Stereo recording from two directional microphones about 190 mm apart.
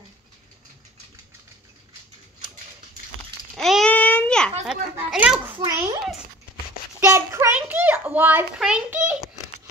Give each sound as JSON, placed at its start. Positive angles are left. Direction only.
{"t": 3.5, "sound": "babbling", "side_deg": 0}
{"t": 4.6, "sound": "a child's voice", "side_deg": -5}
{"t": 7.0, "sound": "a sound", "side_deg": -15}